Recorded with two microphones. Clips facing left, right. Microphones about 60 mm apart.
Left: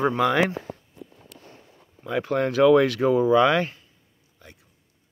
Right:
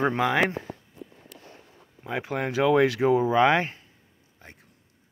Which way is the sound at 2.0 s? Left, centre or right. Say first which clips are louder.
Left 5 dB; centre.